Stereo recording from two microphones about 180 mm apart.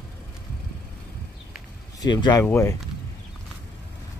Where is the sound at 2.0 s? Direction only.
25° left (ahead or behind).